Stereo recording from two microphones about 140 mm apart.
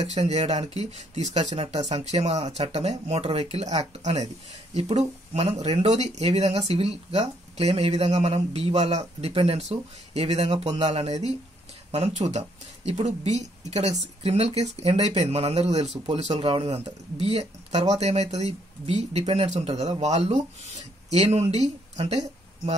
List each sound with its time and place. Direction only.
0.0 s speech: 45° right (ahead or behind)